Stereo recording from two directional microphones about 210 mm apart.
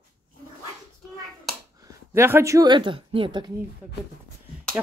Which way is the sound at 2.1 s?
10° right (ahead or behind).